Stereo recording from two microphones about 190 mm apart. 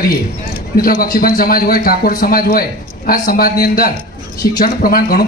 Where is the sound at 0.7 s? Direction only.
50° left (ahead or behind).